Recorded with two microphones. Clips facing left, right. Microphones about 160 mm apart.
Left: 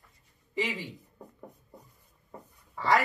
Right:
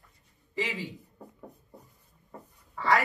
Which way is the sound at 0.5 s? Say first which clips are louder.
Left 1 dB; 20° left (ahead or behind).